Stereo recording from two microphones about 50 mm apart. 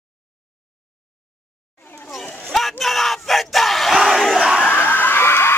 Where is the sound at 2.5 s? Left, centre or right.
Centre.